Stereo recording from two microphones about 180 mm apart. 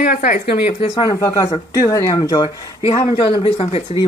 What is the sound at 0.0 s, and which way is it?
Speech, 50° left (ahead or behind).